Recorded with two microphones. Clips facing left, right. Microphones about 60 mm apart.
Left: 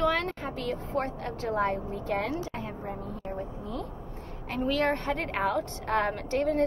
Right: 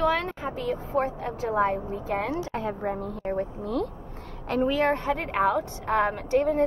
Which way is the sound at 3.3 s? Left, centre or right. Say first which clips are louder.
Right 9 dB; right.